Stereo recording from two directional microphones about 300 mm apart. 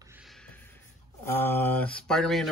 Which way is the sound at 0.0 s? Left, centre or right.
Centre.